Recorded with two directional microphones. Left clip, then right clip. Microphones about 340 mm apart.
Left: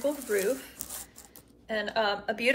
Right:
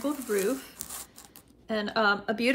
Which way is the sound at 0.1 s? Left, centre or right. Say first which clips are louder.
Even; centre.